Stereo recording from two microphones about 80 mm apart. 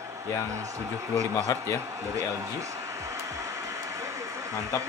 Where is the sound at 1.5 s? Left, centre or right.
Left.